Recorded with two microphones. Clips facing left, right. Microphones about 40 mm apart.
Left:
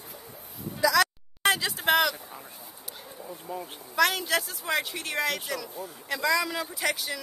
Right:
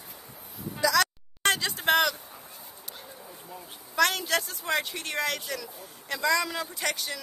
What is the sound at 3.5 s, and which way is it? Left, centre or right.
Speech, left.